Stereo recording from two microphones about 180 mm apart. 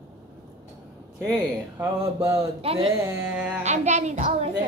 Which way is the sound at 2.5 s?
30° right (ahead or behind).